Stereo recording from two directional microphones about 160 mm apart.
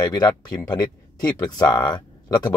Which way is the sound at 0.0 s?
25° left (ahead or behind).